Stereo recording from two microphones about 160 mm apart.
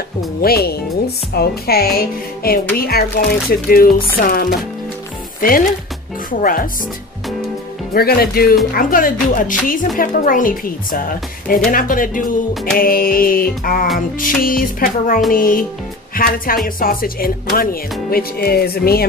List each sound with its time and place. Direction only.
0.4 s speech: 75° left (ahead or behind)
6.4 s a woman's voice: 60° left (ahead or behind)
7.9 s speech: 70° left (ahead or behind)
8.7 s a woman's voice: 55° left (ahead or behind); by 19.0 s 75° left (ahead or behind)